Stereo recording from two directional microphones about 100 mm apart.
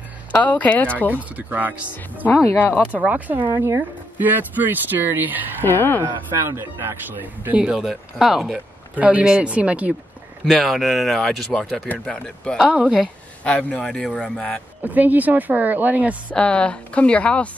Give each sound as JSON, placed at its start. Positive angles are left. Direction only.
{"t": 0.3, "sound": "speech", "side_deg": 15}
{"t": 1.3, "sound": "speech", "side_deg": -15}
{"t": 3.5, "sound": "speech", "side_deg": -30}
{"t": 4.2, "sound": "speech", "side_deg": -20}
{"t": 5.6, "sound": "speech", "side_deg": 20}
{"t": 6.5, "sound": "speech", "side_deg": -25}
{"t": 7.4, "sound": "speech", "side_deg": -10}
{"t": 8.9, "sound": "speech", "side_deg": -15}
{"t": 10.4, "sound": "speech", "side_deg": 0}
{"t": 12.5, "sound": "speech", "side_deg": -10}
{"t": 13.4, "sound": "speech", "side_deg": 10}
{"t": 14.8, "sound": "speech", "side_deg": -15}
{"t": 16.3, "sound": "speech", "side_deg": 10}